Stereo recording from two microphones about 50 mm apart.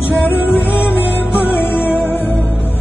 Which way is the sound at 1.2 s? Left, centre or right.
Right.